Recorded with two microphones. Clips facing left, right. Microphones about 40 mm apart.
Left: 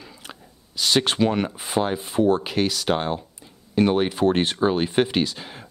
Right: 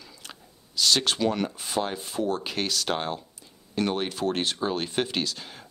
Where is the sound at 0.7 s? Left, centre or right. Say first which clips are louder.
Left 4 dB; centre.